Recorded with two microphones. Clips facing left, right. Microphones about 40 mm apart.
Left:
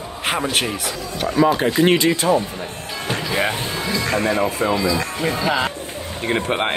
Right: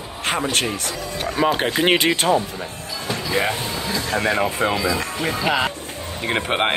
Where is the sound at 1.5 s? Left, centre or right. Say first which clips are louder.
Left 2 dB; right.